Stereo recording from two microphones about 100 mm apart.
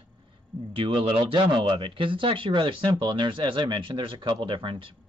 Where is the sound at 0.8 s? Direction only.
55° right (ahead or behind).